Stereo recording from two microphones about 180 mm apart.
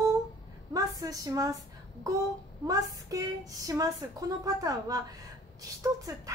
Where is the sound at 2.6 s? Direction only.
20° right (ahead or behind).